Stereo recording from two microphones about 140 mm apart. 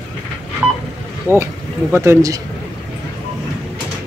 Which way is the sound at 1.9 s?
20° right (ahead or behind).